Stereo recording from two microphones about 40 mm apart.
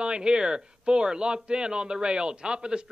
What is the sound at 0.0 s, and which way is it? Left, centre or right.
A man's voice, right.